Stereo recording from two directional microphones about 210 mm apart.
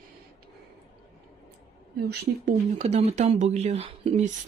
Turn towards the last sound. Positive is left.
turn(degrees=-30)  # may be behind; listen again after turning